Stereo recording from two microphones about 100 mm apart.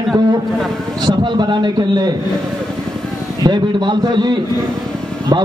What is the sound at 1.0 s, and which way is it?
A man's voice, 50° right (ahead or behind).